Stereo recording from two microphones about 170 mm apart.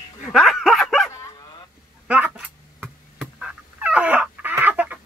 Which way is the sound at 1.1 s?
20° left (ahead or behind).